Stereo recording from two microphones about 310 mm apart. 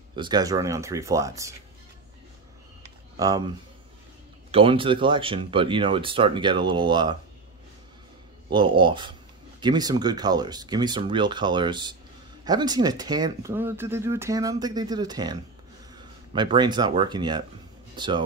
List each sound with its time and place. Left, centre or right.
0.1 s speech: centre
3.2 s speech: centre
8.5 s speech: centre
16.3 s speech: centre